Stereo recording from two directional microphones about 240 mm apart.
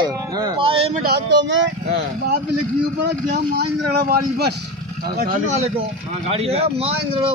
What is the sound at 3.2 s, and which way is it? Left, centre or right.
A man's voice, right.